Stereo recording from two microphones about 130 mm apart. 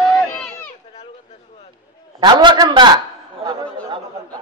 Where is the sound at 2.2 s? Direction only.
35° right (ahead or behind).